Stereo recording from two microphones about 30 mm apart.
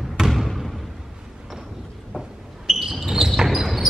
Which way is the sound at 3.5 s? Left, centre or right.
Centre.